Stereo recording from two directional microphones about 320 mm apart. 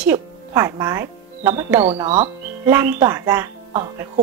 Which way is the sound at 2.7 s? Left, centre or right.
Centre.